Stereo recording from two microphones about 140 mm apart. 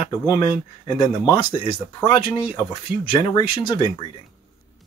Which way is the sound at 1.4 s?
35° left (ahead or behind).